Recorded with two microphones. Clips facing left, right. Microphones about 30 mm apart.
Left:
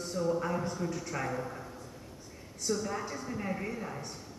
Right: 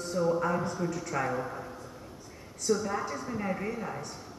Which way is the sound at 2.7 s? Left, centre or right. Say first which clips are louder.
Right 4 dB; centre.